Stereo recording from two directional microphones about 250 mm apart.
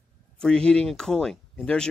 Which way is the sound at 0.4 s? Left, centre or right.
Centre.